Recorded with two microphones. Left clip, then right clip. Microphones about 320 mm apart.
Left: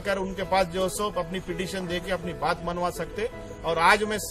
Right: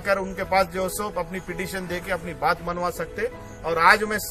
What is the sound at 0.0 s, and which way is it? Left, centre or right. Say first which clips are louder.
A man's voice: right 4 dB; centre.